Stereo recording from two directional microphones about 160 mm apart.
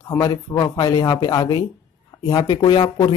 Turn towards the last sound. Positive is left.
turn(degrees=30)  # may be behind; listen again after turning